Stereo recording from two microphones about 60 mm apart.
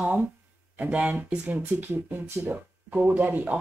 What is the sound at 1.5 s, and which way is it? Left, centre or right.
A woman's voice, right.